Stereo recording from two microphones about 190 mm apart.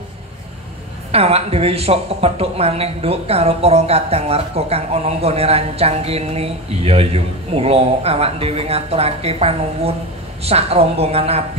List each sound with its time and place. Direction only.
1.1 s speech: 30° right (ahead or behind)